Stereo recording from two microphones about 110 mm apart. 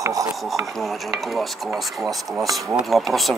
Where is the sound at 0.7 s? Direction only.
Centre (ahead or behind).